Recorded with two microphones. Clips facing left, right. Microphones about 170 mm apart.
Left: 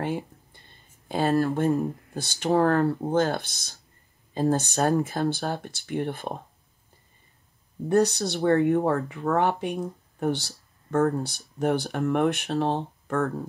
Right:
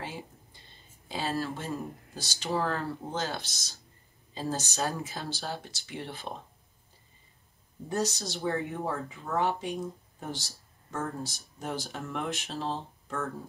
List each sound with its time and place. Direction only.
0.0 s speech: 55° left (ahead or behind)
7.9 s speech: 60° left (ahead or behind)